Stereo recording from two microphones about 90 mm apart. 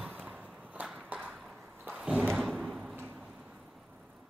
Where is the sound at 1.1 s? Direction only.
15° right (ahead or behind).